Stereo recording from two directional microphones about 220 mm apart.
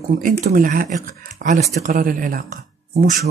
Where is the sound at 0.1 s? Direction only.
40° right (ahead or behind).